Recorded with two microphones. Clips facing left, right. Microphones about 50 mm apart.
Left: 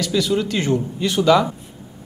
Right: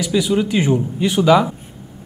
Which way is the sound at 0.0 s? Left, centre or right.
Centre.